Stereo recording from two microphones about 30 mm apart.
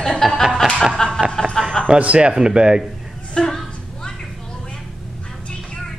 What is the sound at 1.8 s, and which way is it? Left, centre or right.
Speech, left.